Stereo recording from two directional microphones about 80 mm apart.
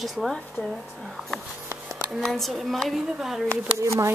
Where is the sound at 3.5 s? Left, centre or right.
Right.